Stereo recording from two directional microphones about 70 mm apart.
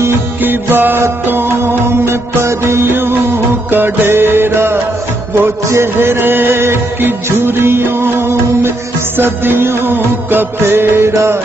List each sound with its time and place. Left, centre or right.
0.4 s music: right